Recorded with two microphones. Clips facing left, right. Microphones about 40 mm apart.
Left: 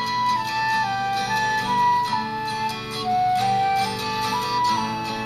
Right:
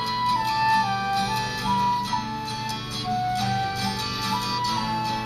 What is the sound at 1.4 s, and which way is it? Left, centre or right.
Music, left.